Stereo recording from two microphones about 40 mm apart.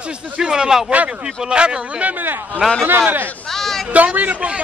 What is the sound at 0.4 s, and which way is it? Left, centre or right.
Speech, centre.